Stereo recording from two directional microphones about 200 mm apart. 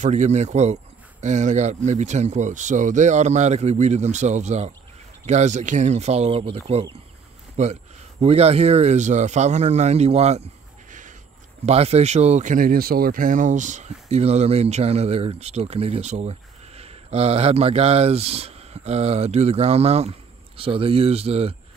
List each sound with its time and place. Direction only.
0.0 s speech: 35° right (ahead or behind)